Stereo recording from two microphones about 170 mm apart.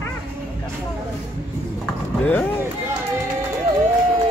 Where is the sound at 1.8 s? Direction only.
5° left (ahead or behind).